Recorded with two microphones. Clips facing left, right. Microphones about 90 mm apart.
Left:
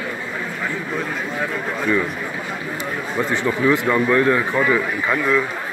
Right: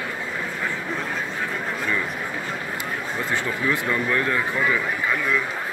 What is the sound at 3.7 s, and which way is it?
Speech, 25° left (ahead or behind).